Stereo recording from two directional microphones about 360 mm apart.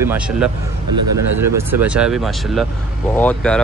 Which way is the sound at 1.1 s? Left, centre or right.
Right.